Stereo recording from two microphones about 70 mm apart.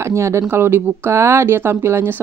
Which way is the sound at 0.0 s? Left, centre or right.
Right.